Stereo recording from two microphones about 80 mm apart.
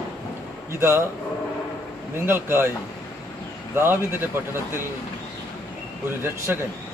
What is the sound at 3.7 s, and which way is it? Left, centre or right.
Speech, right.